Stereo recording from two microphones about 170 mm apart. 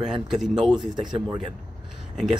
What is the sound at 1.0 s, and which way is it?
Speech, 25° right (ahead or behind).